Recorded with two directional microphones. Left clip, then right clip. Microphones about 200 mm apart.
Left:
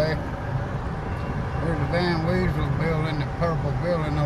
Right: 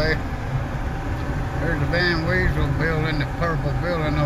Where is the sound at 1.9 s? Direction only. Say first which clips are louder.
Right 4 dB; 10° left (ahead or behind).